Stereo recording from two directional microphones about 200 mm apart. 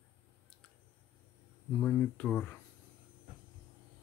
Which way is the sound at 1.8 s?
5° left (ahead or behind).